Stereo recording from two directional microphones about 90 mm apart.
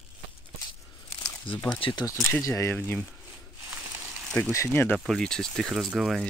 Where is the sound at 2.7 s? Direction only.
20° left (ahead or behind).